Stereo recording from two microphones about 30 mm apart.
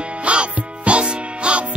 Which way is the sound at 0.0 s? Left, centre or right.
Right.